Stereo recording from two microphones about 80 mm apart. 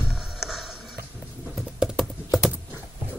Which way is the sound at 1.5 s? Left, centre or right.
Centre.